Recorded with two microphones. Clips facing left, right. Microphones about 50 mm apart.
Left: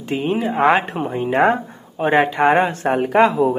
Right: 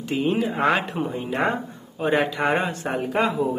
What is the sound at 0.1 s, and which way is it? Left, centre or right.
Speech, left.